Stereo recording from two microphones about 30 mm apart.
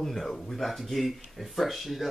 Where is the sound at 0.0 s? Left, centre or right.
Centre.